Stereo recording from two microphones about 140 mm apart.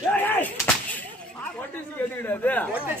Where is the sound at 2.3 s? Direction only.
10° left (ahead or behind).